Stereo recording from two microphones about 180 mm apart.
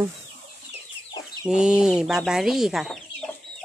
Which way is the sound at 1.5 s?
5° right (ahead or behind).